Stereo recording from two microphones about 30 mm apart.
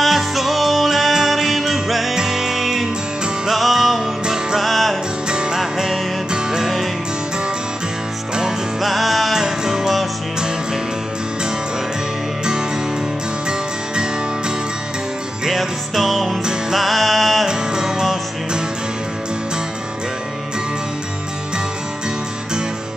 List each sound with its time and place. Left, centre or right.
0.0 s music: centre
5.3 s music: right
5.6 s music: centre
8.8 s music: centre
9.4 s music: centre
15.4 s music: centre
17.5 s music: right